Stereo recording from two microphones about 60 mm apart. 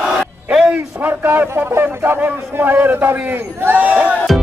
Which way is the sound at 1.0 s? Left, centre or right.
Right.